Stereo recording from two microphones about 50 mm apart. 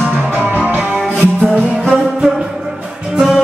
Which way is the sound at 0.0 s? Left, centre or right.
Right.